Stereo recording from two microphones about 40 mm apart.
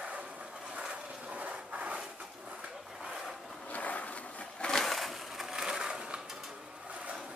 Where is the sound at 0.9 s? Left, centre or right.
Right.